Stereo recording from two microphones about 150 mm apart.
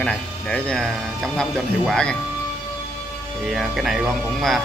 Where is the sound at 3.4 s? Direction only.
Centre (ahead or behind).